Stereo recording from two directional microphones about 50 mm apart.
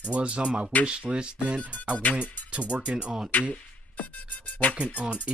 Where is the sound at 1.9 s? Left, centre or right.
Left.